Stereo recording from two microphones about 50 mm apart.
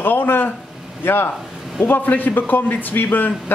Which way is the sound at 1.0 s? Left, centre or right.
Left.